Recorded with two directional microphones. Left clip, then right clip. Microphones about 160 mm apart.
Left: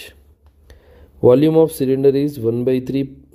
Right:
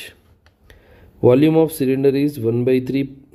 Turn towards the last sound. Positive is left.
turn(degrees=20)  # may be behind; listen again after turning